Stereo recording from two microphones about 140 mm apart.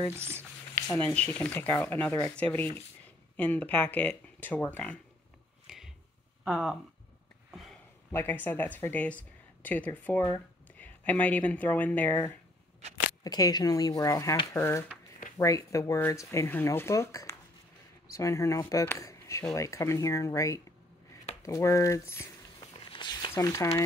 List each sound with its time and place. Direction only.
0.1 s speech: 15° right (ahead or behind)
0.8 s speech: 10° left (ahead or behind)
5.7 s a sound: 5° right (ahead or behind)
6.4 s speech: 5° right (ahead or behind)
8.1 s speech: 15° left (ahead or behind)
13.2 s speech: 25° left (ahead or behind)
22.9 s a sound: 35° left (ahead or behind)
23.3 s speech: 25° left (ahead or behind)